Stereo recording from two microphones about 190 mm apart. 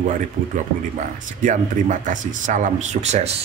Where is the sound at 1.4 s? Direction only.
40° right (ahead or behind).